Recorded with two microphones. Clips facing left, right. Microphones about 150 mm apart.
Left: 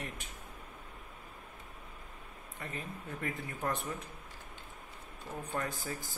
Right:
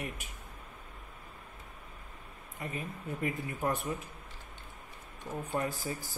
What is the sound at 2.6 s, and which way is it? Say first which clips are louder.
Speech: right 3 dB; 20° right (ahead or behind).